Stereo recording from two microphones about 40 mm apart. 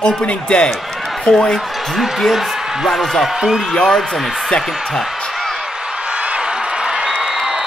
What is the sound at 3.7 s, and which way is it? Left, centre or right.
Speech, left.